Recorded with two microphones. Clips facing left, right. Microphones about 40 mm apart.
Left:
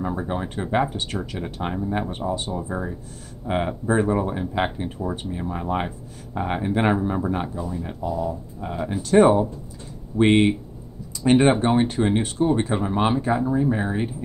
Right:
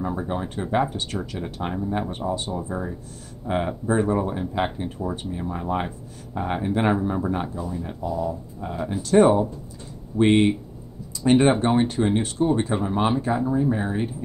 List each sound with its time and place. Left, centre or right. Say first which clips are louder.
0.0 s speech: left 1 dB; centre
2.2 s speech: even; centre
3.4 s speech: left 1 dB; centre
8.8 s speech: left 1 dB; centre